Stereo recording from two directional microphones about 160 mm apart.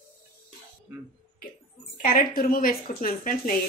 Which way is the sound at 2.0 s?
65° left (ahead or behind).